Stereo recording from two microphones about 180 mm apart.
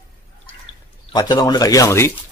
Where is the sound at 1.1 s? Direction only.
20° left (ahead or behind).